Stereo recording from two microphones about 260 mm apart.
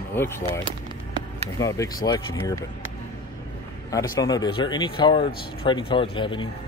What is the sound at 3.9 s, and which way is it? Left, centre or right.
Speech, centre.